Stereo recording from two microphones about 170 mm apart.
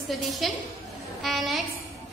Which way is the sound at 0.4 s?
Centre (ahead or behind).